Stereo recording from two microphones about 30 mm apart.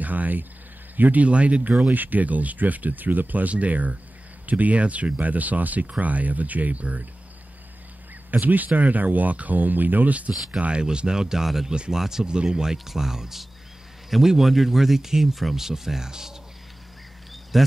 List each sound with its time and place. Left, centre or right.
0.0 s speech: right
0.9 s speech: right
1.2 s speech: right
1.9 s speech: right
3.4 s speech: right
8.3 s speech: right
10.3 s speech: centre
10.7 s speech: right; by 12.3 s centre
12.3 s speech: right
12.7 s speech: centre
17.5 s speech: centre